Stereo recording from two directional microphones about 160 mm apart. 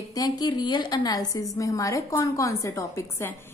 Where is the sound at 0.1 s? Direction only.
25° left (ahead or behind).